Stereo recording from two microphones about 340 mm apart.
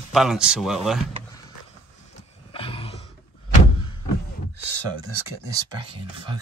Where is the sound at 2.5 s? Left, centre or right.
Centre.